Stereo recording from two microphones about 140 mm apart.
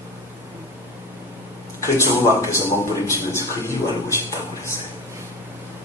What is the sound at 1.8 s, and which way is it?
A man's voice, 20° left (ahead or behind).